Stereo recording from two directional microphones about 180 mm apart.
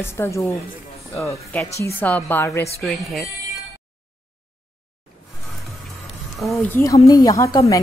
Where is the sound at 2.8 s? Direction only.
Centre (ahead or behind).